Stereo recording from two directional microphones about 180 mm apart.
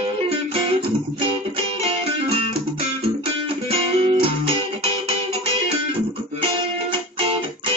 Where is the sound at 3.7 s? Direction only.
30° right (ahead or behind).